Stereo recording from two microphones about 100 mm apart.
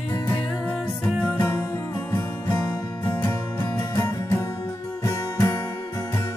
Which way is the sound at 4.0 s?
30° left (ahead or behind).